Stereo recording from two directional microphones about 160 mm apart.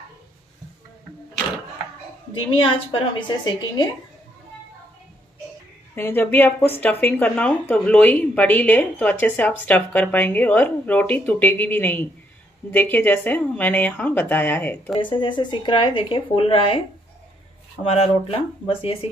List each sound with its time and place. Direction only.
2.6 s a woman's voice: 30° left (ahead or behind)
5.9 s speech: 15° left (ahead or behind)
15.0 s speech: 30° left (ahead or behind)
17.8 s speech: 40° left (ahead or behind)